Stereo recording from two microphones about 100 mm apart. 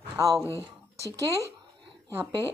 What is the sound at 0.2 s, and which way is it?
Speech, 35° right (ahead or behind).